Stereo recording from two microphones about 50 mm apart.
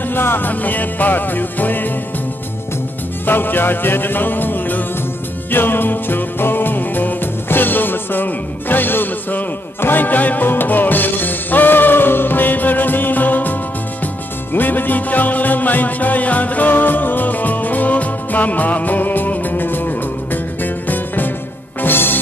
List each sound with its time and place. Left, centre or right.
0.1 s music: left
3.3 s music: left